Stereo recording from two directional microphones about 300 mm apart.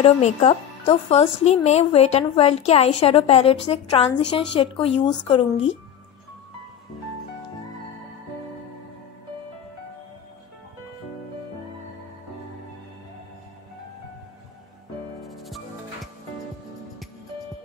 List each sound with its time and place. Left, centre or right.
0.0 s speech: centre
15.2 s music: centre